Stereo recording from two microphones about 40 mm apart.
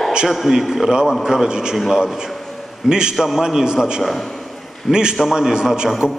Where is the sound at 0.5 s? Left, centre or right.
Centre.